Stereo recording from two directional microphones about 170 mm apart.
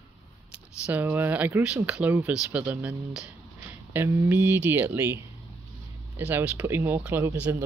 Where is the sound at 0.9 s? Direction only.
10° right (ahead or behind).